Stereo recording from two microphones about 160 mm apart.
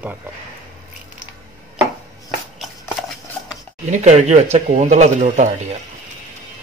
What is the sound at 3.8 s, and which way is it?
Speech, 45° right (ahead or behind).